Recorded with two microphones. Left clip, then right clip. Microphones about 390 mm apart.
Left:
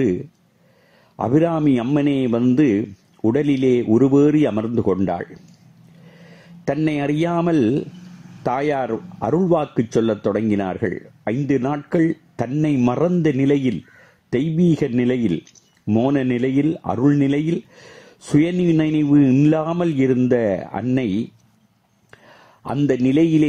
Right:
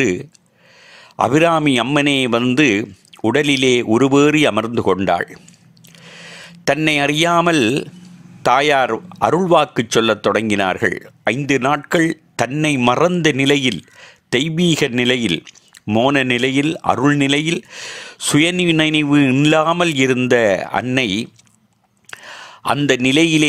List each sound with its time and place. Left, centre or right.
1.1 s a man's voice: right
22.1 s a sound: right
22.8 s a man's voice: right